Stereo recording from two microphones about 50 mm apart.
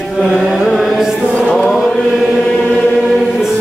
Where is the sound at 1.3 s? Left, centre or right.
Centre.